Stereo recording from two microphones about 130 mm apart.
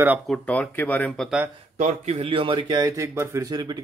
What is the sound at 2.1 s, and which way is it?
Speech, 45° right (ahead or behind).